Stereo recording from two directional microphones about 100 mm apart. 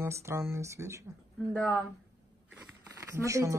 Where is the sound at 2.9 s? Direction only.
30° right (ahead or behind).